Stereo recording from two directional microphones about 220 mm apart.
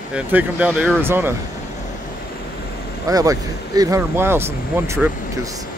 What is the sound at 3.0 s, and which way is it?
Speech, 15° right (ahead or behind).